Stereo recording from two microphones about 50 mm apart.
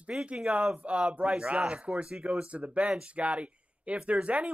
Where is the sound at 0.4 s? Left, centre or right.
Centre.